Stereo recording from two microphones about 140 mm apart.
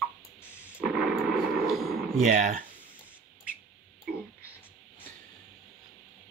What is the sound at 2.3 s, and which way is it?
Speech, 65° right (ahead or behind).